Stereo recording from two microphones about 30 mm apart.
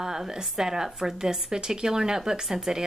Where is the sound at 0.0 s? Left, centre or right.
Centre.